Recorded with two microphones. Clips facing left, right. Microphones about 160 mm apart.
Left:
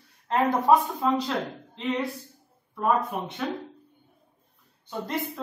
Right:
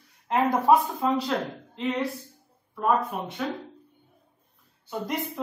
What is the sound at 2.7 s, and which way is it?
Speech, centre (ahead or behind).